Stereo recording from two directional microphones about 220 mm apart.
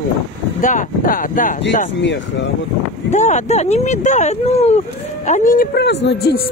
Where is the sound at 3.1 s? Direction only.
30° left (ahead or behind).